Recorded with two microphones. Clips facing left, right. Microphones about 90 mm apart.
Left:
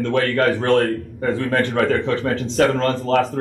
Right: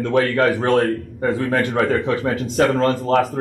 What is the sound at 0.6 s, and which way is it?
Speech, 30° right (ahead or behind).